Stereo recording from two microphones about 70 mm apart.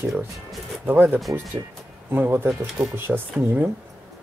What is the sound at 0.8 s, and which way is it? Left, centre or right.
Speech, right.